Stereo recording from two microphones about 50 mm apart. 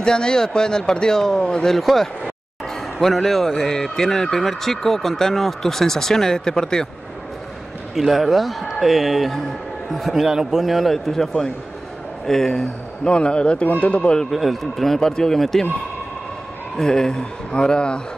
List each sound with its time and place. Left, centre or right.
0.0 s a man's voice: centre
1.8 s a man's voice: centre
7.9 s a man's voice: centre; by 14.1 s left
14.3 s a man's voice: centre
16.7 s a man's voice: centre